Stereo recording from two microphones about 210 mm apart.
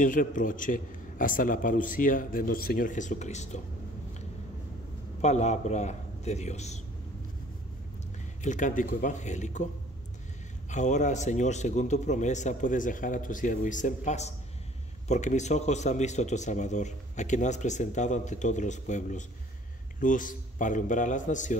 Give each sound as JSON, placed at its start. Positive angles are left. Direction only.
{"t": 0.0, "sound": "a man's voice", "side_deg": 40}
{"t": 5.2, "sound": "a man's voice", "side_deg": 35}
{"t": 8.4, "sound": "a man's voice", "side_deg": 35}
{"t": 10.7, "sound": "a man's voice", "side_deg": 35}